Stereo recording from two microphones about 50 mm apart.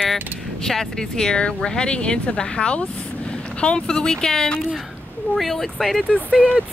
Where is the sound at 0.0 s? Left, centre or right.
Centre.